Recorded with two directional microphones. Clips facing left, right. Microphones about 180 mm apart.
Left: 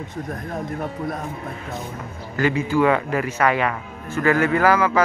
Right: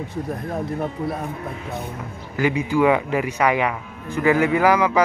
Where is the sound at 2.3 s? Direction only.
15° right (ahead or behind).